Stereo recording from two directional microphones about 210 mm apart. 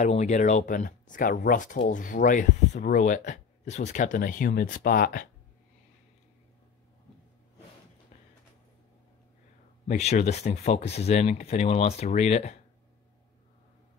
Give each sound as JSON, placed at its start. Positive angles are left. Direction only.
{"t": 0.0, "sound": "speech", "side_deg": 35}
{"t": 9.8, "sound": "speech", "side_deg": 35}